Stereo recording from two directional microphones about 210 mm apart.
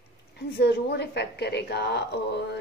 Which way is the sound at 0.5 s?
50° left (ahead or behind).